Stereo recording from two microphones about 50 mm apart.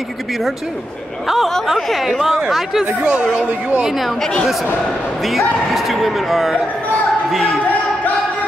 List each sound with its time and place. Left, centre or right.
1.2 s speech: centre
3.0 s speech: centre
4.2 s speech: centre
5.7 s speech: centre